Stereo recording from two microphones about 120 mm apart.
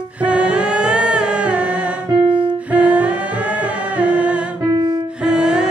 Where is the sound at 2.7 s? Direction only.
10° right (ahead or behind).